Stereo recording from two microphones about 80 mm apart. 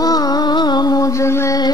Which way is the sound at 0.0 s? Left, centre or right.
Left.